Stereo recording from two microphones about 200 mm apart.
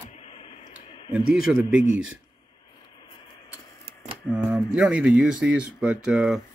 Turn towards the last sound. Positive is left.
turn(degrees=0)  # may be behind; listen again after turning